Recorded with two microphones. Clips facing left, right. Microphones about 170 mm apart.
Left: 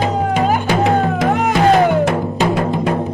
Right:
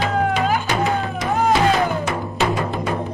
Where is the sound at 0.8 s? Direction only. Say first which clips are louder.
Left 7 dB; 75° left (ahead or behind).